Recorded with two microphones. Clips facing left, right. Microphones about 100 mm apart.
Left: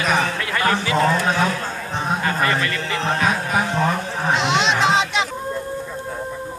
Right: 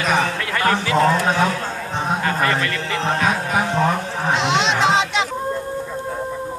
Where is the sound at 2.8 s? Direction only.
35° right (ahead or behind).